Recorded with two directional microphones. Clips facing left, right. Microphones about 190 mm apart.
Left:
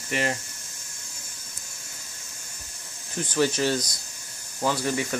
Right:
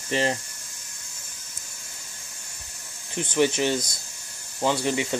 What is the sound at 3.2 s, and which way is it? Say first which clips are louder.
Speech: right 2 dB; 20° right (ahead or behind).